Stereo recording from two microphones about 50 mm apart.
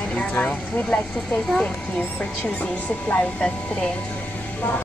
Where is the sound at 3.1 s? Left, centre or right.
Left.